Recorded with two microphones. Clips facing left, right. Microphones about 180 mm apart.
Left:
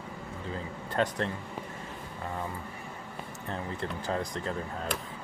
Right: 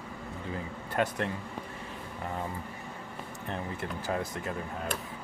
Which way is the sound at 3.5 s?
10° right (ahead or behind).